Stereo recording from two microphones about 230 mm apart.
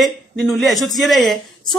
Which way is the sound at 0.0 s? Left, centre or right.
Centre.